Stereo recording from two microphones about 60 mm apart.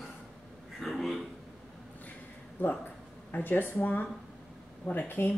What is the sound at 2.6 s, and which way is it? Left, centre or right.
Speech, left.